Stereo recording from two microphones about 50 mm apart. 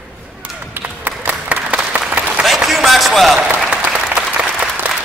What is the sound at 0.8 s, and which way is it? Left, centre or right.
Music, right.